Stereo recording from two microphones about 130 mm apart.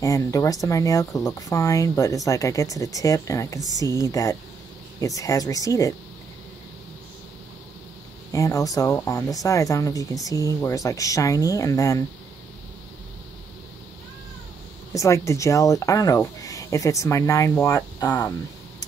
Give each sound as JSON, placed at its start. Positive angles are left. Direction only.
{"t": 0.0, "sound": "speech", "side_deg": 25}
{"t": 8.3, "sound": "speech", "side_deg": 25}
{"t": 15.0, "sound": "speech", "side_deg": 25}